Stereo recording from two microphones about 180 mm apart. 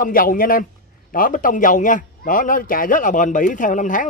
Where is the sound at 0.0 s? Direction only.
50° left (ahead or behind).